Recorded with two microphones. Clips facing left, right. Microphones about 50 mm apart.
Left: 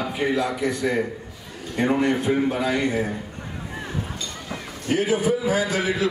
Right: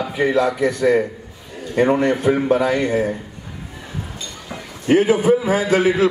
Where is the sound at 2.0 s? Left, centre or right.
Right.